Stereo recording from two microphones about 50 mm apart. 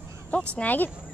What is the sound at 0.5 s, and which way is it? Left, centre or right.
Speech, left.